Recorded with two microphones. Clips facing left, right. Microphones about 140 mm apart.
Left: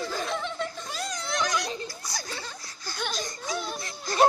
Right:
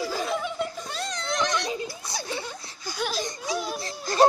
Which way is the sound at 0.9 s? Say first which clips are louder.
Right 2 dB; centre (ahead or behind).